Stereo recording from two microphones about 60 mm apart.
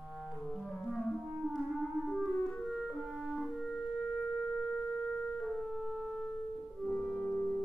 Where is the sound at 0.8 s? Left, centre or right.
Centre.